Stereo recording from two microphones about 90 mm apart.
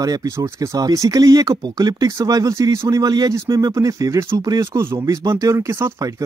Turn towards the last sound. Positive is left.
turn(degrees=-30)  # may be behind; listen again after turning